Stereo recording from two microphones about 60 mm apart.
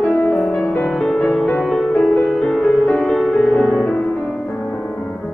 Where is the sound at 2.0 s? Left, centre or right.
Left.